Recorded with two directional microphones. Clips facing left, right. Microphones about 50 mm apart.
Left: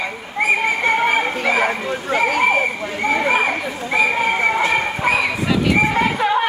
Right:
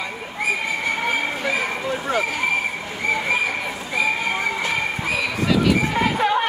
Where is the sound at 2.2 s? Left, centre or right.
Left.